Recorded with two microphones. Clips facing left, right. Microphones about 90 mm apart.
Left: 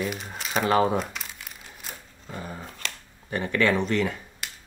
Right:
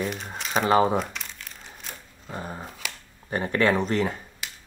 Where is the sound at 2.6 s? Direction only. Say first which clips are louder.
Even; 5° right (ahead or behind).